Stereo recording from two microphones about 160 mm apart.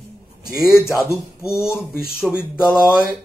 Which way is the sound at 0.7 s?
15° left (ahead or behind).